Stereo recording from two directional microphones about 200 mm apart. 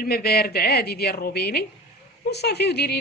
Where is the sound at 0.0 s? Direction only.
50° left (ahead or behind).